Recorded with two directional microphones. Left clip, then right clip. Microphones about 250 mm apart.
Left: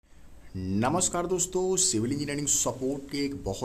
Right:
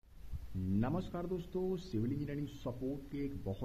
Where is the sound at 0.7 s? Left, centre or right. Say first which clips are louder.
Left 13 dB; centre.